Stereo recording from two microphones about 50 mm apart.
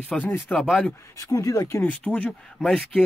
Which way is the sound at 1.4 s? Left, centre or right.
Left.